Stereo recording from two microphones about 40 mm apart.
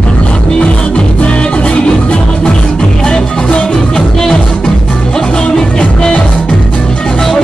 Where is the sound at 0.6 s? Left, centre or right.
Left.